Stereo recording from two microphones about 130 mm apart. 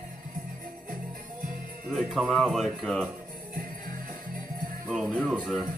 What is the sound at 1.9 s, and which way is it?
Speech, centre (ahead or behind).